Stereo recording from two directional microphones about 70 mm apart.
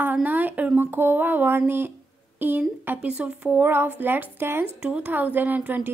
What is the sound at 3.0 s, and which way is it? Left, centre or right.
Speech, centre.